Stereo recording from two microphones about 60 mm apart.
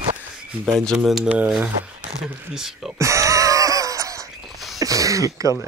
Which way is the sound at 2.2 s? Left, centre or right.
Centre.